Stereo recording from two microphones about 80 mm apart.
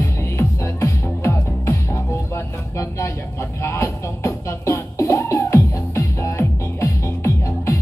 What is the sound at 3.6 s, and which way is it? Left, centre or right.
Music, left.